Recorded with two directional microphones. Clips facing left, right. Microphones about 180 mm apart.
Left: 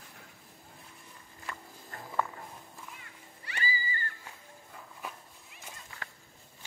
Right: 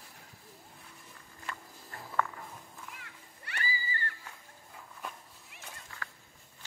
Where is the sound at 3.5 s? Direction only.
60° right (ahead or behind).